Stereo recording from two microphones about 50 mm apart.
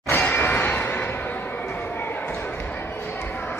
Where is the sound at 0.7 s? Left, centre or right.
Left.